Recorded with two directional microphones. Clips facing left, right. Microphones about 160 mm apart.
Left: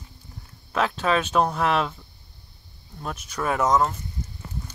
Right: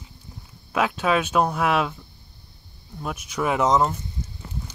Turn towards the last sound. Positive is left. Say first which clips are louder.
# right 1 dB
turn(degrees=-15)  # may be behind; listen again after turning